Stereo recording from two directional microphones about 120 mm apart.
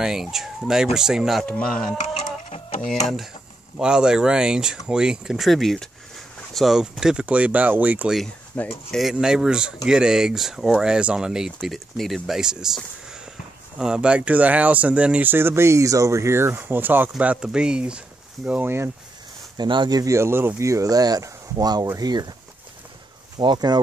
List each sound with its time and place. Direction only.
0.0 s speech: 5° right (ahead or behind)
1.4 s speech: 10° left (ahead or behind)
2.0 s chicken: 65° left (ahead or behind)
3.7 s speech: 5° right (ahead or behind)
8.5 s speech: 10° left (ahead or behind)
8.9 s speech: 5° right (ahead or behind)
19.5 s speech: 40° right (ahead or behind)
23.3 s speech: 40° right (ahead or behind)